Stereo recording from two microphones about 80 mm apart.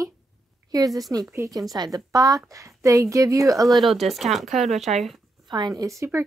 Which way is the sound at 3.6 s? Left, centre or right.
Centre.